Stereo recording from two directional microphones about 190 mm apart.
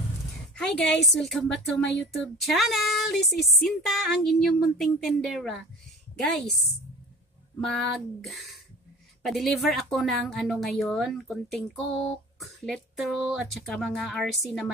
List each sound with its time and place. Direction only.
0.6 s a woman's voice: centre (ahead or behind)
7.7 s a woman's voice: centre (ahead or behind)